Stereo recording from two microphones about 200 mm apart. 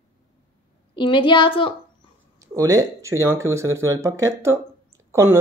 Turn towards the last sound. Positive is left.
turn(degrees=-15)  # may be behind; listen again after turning